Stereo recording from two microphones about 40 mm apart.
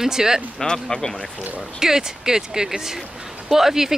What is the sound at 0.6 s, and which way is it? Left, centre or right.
Speech, centre.